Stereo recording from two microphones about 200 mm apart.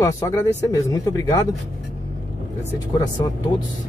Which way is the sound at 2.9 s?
20° left (ahead or behind).